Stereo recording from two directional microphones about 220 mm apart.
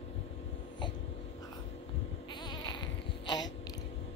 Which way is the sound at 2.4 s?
20° left (ahead or behind).